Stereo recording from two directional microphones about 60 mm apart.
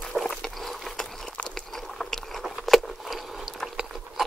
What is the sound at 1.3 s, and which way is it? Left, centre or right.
Biting, centre.